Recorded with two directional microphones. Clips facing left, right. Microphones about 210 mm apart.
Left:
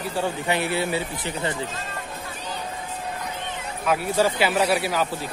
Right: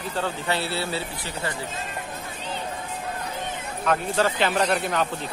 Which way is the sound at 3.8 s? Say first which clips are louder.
Left 2 dB; 10° left (ahead or behind).